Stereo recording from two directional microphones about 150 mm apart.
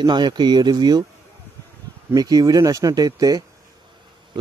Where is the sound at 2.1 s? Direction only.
25° right (ahead or behind).